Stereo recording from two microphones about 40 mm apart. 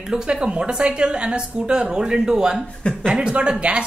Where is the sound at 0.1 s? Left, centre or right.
Right.